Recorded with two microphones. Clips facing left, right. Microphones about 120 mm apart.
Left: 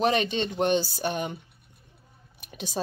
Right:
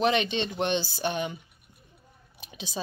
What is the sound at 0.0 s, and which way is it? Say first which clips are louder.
Speech: left 1 dB; 40° left (ahead or behind).